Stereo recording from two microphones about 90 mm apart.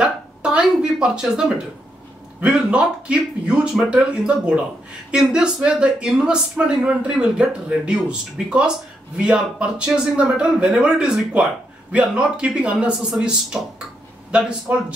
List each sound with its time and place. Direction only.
0.0 s speech: 10° right (ahead or behind)